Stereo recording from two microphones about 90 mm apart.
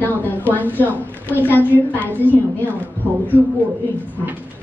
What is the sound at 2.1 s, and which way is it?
Speech, 20° left (ahead or behind).